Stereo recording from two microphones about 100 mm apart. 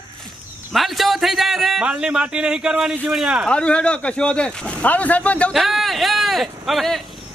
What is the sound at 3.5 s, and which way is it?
Speech, 10° left (ahead or behind).